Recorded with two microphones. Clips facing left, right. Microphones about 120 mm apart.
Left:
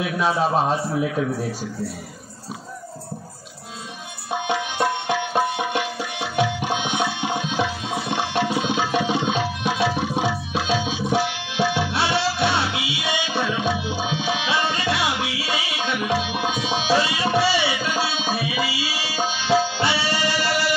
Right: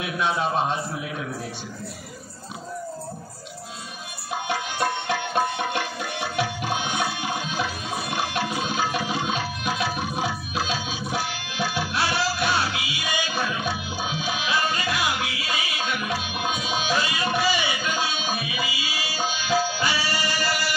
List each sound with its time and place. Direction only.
0.2 s a man's voice: 35° left (ahead or behind)
4.5 s music: 20° left (ahead or behind)
8.5 s tabla: 25° left (ahead or behind)
10.7 s music: 25° left (ahead or behind)